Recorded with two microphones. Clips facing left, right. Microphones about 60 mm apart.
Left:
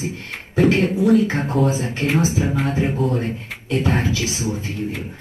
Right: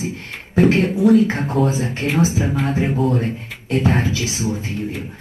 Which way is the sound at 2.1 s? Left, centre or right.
Left.